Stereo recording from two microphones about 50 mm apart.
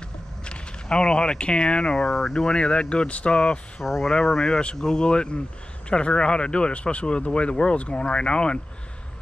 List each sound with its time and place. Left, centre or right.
0.5 s speech: centre
2.4 s speech: centre
3.8 s speech: centre
4.3 s speech: centre